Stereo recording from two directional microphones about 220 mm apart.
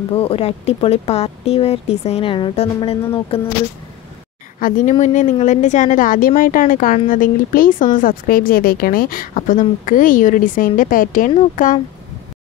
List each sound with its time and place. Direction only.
0.1 s speech: 25° left (ahead or behind)
4.6 s a woman's voice: 35° left (ahead or behind)